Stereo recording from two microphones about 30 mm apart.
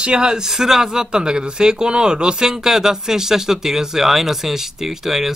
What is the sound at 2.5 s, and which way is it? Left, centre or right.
Speech, centre.